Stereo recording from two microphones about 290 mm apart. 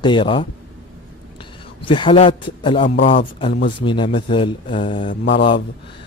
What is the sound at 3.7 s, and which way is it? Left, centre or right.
Speech, centre.